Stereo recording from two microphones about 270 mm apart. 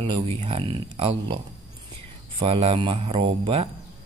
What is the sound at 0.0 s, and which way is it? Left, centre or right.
Speech, right.